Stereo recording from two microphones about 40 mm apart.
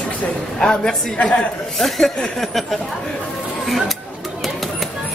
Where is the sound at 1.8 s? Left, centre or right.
Centre.